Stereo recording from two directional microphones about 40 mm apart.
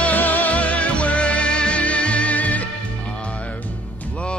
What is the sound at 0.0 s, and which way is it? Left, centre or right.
Music, left.